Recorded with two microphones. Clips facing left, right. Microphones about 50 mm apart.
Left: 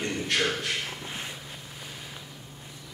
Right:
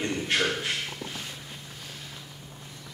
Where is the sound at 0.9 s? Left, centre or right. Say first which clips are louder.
Left 1 dB; left.